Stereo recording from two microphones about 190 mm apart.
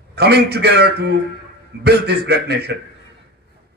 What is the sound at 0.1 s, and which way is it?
A man's voice, 60° right (ahead or behind).